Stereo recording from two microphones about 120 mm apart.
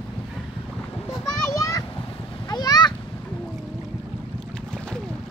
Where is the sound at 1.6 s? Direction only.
30° left (ahead or behind).